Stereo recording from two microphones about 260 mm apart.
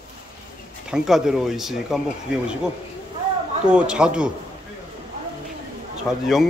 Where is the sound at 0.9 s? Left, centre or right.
Centre.